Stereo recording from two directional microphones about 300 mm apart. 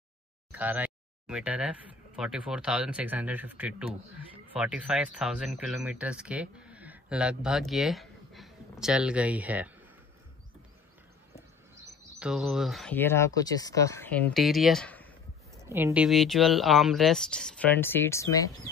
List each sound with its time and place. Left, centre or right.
0.5 s a sound: centre
2.1 s speech: centre
12.2 s speech: centre
15.6 s speech: centre